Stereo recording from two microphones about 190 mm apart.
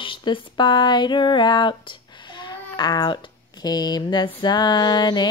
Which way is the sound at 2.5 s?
20° left (ahead or behind).